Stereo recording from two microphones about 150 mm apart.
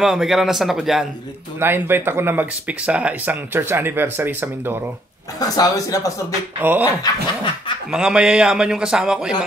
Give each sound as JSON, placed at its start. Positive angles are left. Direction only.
{"t": 0.0, "sound": "a man's voice", "side_deg": -5}
{"t": 1.6, "sound": "speech", "side_deg": -15}
{"t": 5.4, "sound": "speech", "side_deg": 25}
{"t": 6.6, "sound": "speech", "side_deg": -10}
{"t": 7.0, "sound": "speech", "side_deg": 35}
{"t": 7.9, "sound": "a man's voice", "side_deg": -5}